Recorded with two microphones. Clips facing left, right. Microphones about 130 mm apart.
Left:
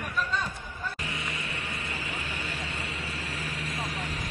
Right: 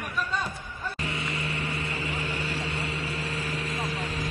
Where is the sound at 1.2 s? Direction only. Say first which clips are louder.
Right 4 dB; 30° right (ahead or behind).